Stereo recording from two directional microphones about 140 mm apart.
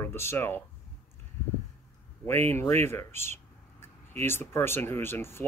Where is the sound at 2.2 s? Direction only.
15° left (ahead or behind).